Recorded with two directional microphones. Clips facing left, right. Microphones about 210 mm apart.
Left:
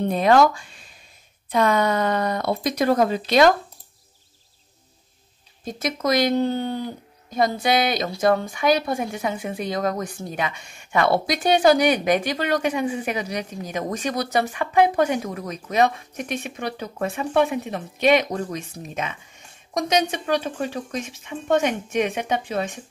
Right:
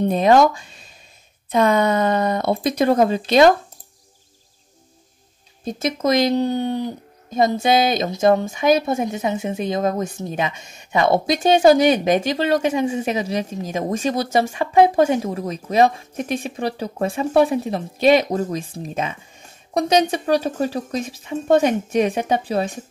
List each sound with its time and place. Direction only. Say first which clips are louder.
0.0 s speech: right 3 dB; 20° right (ahead or behind)
5.7 s speech: right 3 dB; 25° right (ahead or behind)